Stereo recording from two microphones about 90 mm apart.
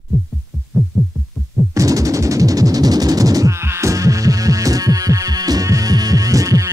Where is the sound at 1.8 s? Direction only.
35° right (ahead or behind).